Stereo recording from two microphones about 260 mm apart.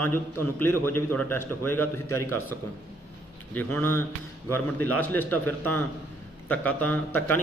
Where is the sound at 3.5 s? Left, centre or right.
Centre.